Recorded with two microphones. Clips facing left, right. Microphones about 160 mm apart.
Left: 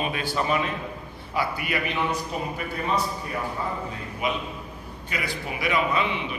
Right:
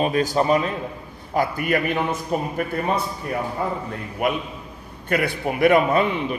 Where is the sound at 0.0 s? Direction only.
40° right (ahead or behind).